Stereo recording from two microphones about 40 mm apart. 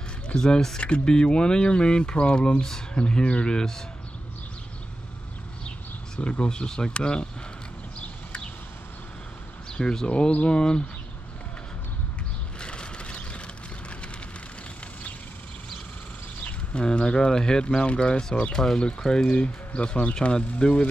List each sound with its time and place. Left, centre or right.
0.3 s speech: centre
6.1 s speech: left
9.7 s speech: centre
12.5 s vehicle: left
16.7 s speech: left
18.6 s speech: centre; by 20.9 s left